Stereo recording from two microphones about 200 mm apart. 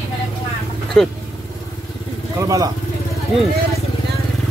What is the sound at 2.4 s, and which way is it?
Speech, 15° right (ahead or behind).